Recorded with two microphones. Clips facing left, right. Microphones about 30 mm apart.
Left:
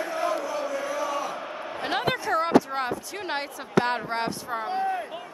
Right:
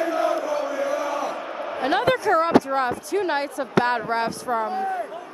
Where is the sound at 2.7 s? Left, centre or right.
Centre.